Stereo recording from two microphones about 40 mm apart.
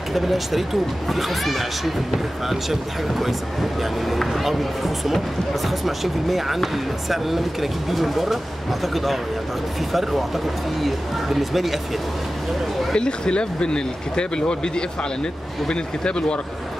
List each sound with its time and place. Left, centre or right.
0.1 s speech: centre
4.4 s speech: centre
10.8 s speech: centre
12.9 s speech: left